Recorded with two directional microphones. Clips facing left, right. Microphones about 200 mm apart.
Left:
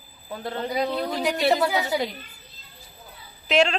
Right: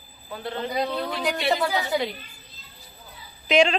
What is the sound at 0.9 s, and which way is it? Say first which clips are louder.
Female singing: left 2 dB; 5° left (ahead or behind).